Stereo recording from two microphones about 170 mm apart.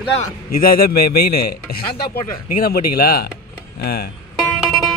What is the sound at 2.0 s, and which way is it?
Speech, 65° left (ahead or behind).